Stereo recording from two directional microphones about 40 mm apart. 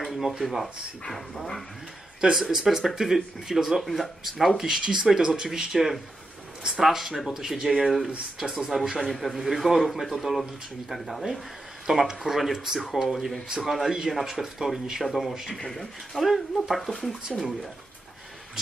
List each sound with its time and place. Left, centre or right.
0.0 s a sound: centre
0.3 s speech: centre
1.0 s speech: centre
2.3 s speech: centre
4.8 s speech: right; by 17.4 s centre